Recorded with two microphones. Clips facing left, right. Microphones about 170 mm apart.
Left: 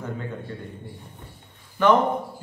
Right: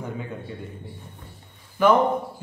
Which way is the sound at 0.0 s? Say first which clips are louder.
Even; 10° right (ahead or behind).